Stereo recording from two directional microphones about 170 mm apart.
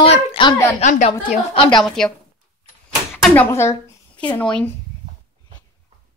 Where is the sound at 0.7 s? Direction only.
40° left (ahead or behind).